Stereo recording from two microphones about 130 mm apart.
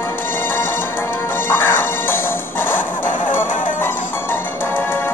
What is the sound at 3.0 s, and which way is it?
Music, 90° left.